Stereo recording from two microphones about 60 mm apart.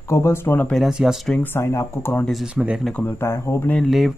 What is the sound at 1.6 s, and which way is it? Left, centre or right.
Speech, left.